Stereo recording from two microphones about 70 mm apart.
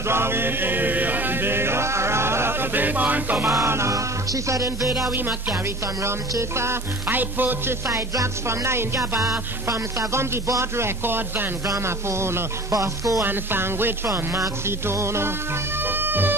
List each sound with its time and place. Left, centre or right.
0.1 s chant: right
3.4 s music: right
6.5 s speech: right
7.1 s music: right
7.9 s speech: right
11.6 s speech: right
12.7 s music: right
13.2 s speech: right
15.8 s music: right